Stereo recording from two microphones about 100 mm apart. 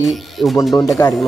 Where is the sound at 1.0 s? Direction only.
45° left (ahead or behind).